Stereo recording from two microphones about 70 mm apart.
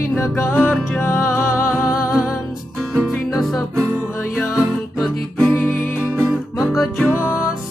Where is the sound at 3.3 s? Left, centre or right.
Centre.